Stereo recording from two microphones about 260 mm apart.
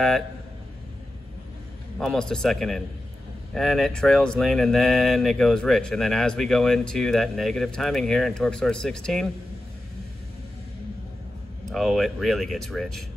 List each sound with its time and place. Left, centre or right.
2.0 s speech: centre
11.7 s speech: centre